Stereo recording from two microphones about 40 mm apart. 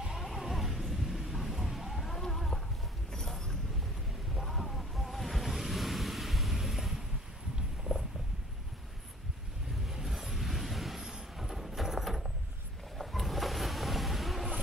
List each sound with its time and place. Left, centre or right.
0.0 s music: centre
0.3 s a sound: centre
4.4 s waves: centre
7.9 s stomach rumble: right
9.8 s a sound: centre
11.0 s vehicle: centre